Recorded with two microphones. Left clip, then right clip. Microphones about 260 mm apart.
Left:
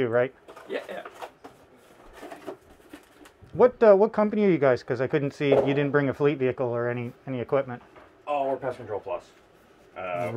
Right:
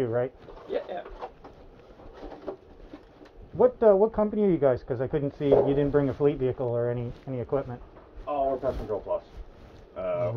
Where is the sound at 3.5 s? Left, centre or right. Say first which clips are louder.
Left 3 dB; left.